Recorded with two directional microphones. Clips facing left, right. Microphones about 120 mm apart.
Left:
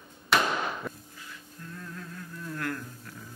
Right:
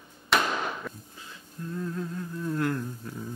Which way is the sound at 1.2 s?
25° right (ahead or behind).